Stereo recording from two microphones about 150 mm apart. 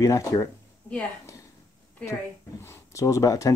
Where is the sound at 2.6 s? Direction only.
20° left (ahead or behind).